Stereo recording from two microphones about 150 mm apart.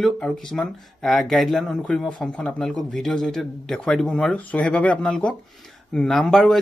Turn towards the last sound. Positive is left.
turn(degrees=0)  # may be behind; listen again after turning